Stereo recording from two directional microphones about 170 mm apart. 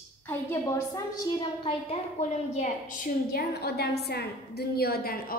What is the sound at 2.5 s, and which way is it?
Speech, 45° left (ahead or behind).